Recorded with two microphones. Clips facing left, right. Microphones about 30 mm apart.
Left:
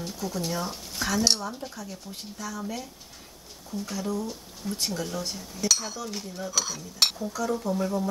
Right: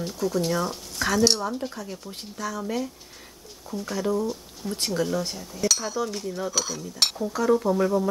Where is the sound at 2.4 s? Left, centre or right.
Right.